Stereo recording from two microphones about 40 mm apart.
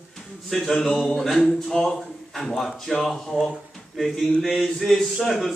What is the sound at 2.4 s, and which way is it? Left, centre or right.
Speech, centre.